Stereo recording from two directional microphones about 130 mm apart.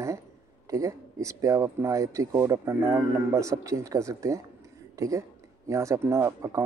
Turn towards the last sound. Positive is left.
turn(degrees=-25)  # may be behind; listen again after turning